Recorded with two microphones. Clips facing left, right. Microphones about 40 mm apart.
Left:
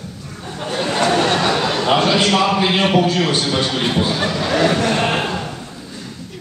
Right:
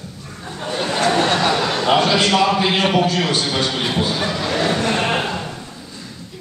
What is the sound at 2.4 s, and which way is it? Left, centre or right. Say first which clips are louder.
A man's voice: left 1 dB; centre.